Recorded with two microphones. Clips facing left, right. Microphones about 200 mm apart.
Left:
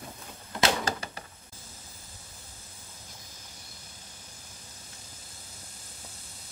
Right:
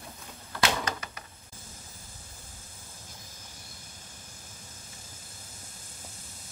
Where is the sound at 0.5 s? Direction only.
30° left (ahead or behind).